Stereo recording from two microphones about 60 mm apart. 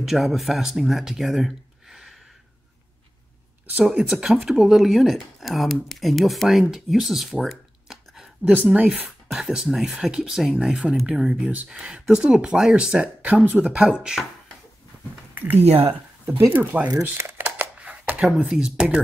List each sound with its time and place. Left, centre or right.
0.0 s speech: centre
3.8 s speech: centre
8.5 s speech: centre
9.3 s speech: centre
15.3 s speech: right
17.3 s shuffling cards: right
17.7 s a sound: right
18.2 s speech: centre